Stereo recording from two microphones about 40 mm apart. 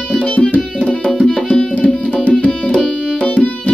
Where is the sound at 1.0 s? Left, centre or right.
Centre.